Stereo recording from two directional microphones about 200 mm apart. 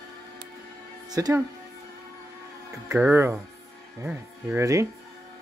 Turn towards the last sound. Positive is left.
turn(degrees=-15)  # may be behind; listen again after turning